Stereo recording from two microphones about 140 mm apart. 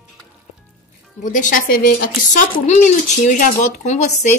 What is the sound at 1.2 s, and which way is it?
Speech, 70° left (ahead or behind).